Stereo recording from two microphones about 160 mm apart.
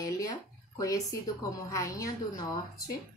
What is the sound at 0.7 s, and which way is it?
A woman's voice, 20° left (ahead or behind).